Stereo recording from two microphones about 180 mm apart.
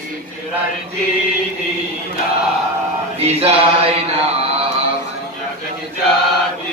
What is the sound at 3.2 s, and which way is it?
Mantra, 35° right (ahead or behind).